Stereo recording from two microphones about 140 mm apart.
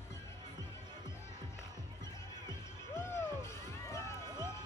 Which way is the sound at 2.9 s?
20° left (ahead or behind).